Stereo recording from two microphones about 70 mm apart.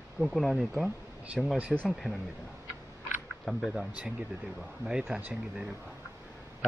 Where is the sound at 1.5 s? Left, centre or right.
Right.